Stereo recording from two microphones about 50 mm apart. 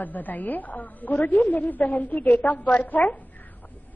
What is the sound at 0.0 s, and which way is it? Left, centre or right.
A woman's voice, left.